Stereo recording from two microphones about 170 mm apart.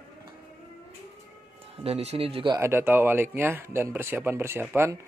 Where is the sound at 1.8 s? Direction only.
40° right (ahead or behind).